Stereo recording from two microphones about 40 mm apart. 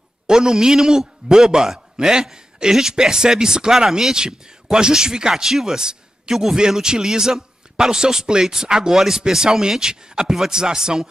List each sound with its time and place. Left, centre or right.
0.3 s a man's voice: centre